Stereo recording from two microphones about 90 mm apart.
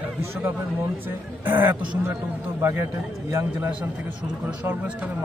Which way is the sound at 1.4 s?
20° right (ahead or behind).